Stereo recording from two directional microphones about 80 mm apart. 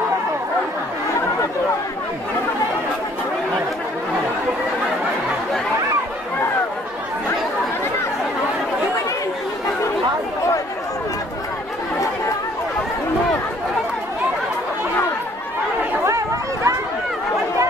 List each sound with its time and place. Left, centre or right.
16.0 s chatter: right